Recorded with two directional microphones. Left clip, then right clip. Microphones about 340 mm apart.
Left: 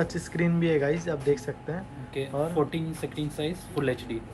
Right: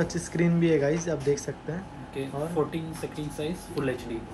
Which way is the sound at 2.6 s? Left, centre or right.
Centre.